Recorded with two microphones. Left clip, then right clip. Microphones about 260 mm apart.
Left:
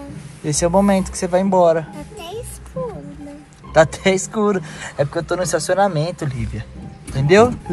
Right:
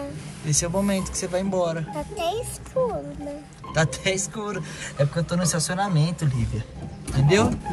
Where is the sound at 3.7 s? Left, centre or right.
Centre.